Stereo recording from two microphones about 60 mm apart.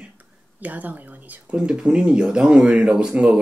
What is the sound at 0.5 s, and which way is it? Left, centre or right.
Speech, right.